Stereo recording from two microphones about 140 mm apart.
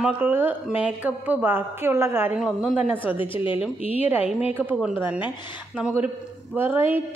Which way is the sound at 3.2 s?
40° left (ahead or behind).